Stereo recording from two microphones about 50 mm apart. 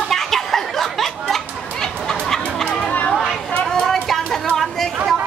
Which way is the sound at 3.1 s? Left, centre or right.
Centre.